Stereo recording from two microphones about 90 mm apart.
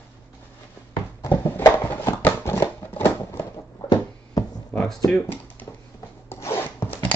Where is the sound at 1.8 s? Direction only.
25° left (ahead or behind).